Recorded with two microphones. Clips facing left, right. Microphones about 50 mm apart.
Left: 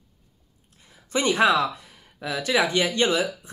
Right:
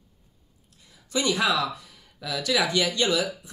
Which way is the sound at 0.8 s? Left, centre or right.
Left.